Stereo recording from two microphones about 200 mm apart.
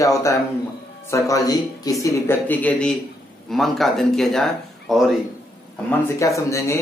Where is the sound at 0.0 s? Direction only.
15° left (ahead or behind).